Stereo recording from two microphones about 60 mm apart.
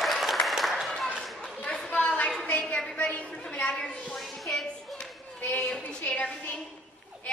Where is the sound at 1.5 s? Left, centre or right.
Centre.